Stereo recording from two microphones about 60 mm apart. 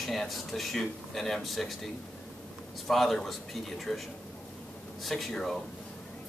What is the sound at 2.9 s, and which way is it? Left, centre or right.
Speech, centre.